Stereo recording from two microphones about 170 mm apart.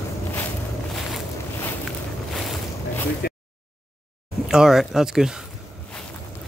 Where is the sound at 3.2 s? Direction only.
65° left (ahead or behind).